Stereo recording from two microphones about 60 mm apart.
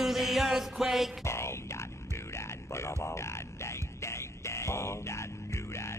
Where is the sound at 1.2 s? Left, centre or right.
Left.